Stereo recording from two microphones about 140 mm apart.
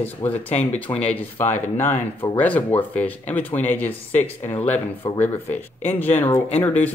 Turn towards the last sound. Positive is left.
turn(degrees=10)  # may be behind; listen again after turning